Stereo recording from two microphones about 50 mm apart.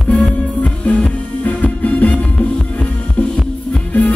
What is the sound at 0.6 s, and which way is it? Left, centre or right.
Music, left.